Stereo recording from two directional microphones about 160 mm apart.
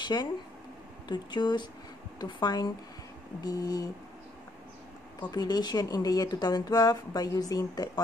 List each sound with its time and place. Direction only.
0.0 s speech: 25° left (ahead or behind)
5.3 s speech: 25° left (ahead or behind)